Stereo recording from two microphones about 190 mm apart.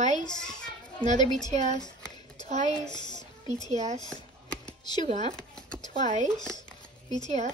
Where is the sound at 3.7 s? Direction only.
40° right (ahead or behind).